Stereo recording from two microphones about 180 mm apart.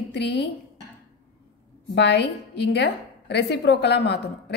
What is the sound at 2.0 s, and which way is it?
A woman's voice, 70° left (ahead or behind).